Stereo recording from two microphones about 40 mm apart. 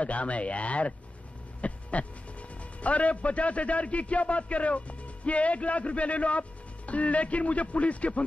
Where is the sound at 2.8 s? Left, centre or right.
Left.